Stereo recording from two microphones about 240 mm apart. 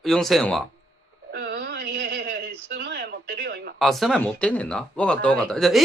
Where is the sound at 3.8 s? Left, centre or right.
Centre.